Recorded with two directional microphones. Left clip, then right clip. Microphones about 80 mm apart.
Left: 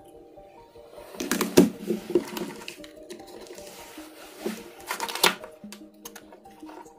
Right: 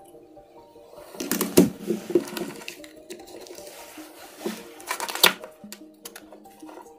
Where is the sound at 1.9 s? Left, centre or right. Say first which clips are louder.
Right 2 dB; right.